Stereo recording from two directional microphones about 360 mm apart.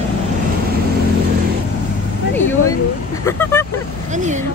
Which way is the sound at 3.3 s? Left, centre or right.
Centre.